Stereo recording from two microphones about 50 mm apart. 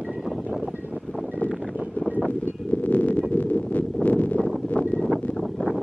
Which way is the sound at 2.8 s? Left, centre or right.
Left.